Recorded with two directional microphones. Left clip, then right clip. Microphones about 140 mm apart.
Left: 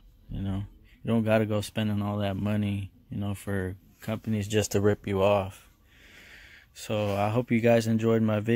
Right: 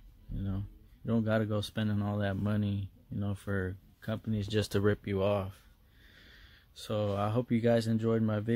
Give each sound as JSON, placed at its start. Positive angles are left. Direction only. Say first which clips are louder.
{"t": 0.4, "sound": "a sound", "louder": "left 5 dB", "side_deg": 15}
{"t": 2.0, "sound": "speech", "louder": "left 4 dB", "side_deg": 0}
{"t": 4.6, "sound": "speech", "louder": "left 5 dB", "side_deg": 5}
{"t": 5.0, "sound": "speech", "louder": "left 7 dB", "side_deg": 20}